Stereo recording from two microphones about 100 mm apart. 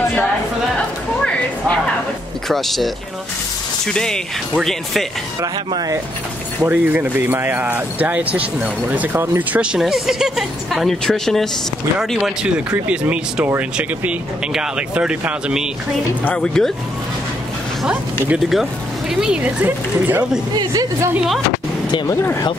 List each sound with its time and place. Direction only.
0.7 s a sound: 10° left (ahead or behind)
2.4 s speech: centre (ahead or behind)
5.7 s a woman's voice: 40° right (ahead or behind)
6.6 s speech: 15° right (ahead or behind)
9.6 s speech: 5° right (ahead or behind)
12.2 s speech: 15° right (ahead or behind)
16.3 s speech: 5° left (ahead or behind)
18.4 s speech: 5° right (ahead or behind)
20.5 s a woman's voice: 35° right (ahead or behind)